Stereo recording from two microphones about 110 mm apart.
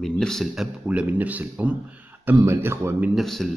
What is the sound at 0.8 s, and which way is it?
A man's voice, 15° right (ahead or behind).